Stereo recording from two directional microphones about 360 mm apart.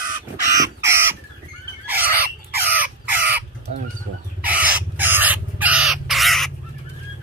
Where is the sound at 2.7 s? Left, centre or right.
Centre.